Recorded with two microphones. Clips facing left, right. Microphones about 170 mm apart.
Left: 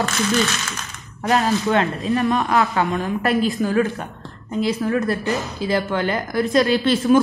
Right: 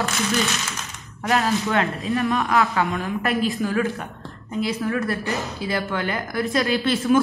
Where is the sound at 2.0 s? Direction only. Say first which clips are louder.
Left 3 dB; 40° left (ahead or behind).